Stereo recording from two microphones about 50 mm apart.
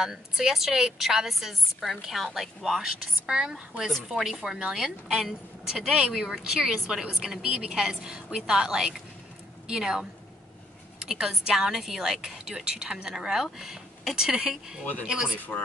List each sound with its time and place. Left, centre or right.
0.0 s a woman's voice: centre
3.3 s a woman's voice: centre
11.1 s a woman's voice: centre